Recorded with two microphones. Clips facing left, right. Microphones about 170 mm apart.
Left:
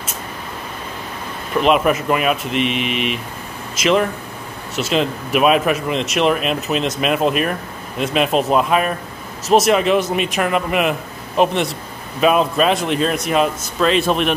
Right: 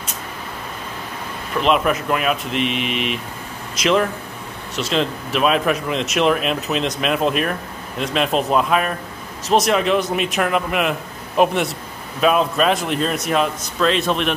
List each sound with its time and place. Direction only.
1.6 s speech: 5° left (ahead or behind)